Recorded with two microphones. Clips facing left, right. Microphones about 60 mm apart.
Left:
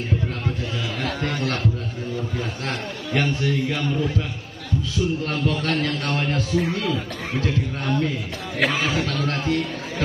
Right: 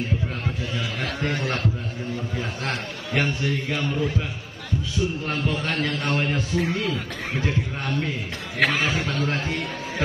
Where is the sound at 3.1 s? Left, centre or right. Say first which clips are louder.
Left 1 dB; centre.